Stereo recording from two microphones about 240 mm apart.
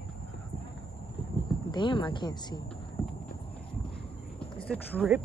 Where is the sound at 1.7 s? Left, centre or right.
Centre.